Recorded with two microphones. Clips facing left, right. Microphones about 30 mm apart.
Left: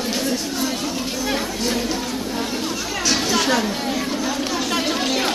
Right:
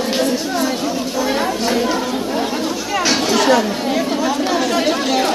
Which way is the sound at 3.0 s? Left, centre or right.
Centre.